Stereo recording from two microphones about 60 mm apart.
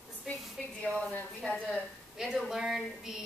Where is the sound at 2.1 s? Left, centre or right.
Centre.